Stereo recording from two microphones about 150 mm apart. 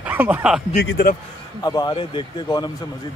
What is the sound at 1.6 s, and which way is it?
A man's voice, 25° left (ahead or behind).